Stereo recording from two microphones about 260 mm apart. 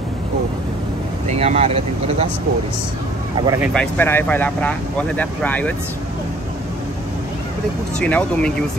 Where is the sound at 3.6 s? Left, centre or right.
Centre.